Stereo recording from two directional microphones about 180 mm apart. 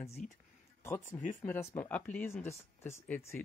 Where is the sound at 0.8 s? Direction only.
15° left (ahead or behind).